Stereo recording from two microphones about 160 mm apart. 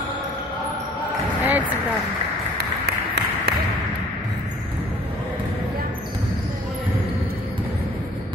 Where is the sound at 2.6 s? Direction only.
90° right.